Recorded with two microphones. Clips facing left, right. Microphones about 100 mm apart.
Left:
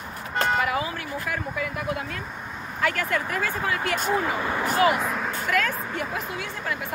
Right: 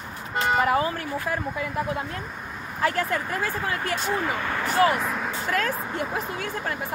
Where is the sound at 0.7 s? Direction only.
40° right (ahead or behind).